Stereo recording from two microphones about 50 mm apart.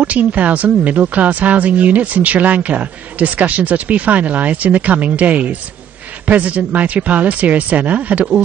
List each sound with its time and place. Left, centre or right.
0.0 s speech: right